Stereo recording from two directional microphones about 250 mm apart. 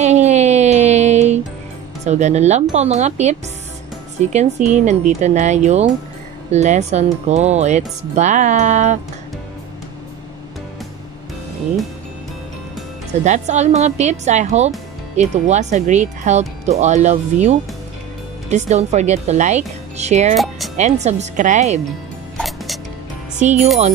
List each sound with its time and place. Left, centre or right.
0.0 s music: right
2.0 s speech: right
13.2 s speech: right
20.3 s speech: centre
20.7 s speech: right
23.4 s speech: right